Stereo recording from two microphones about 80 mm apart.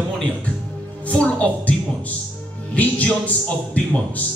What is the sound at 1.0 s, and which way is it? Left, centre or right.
Music, centre.